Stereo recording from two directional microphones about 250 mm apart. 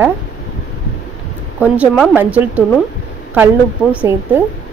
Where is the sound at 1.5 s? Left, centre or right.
Centre.